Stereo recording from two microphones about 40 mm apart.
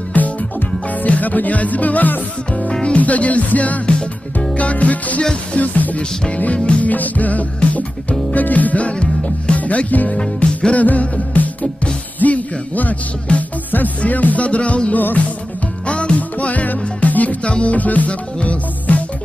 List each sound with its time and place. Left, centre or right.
0.1 s music: left
3.8 s music: left
4.6 s music: left
6.4 s music: left
6.9 s music: left
9.6 s music: left
10.4 s music: left
10.8 s music: left
14.9 s music: left
15.9 s music: left
17.4 s music: left